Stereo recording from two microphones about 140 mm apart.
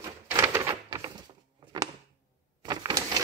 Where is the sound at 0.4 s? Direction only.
20° right (ahead or behind).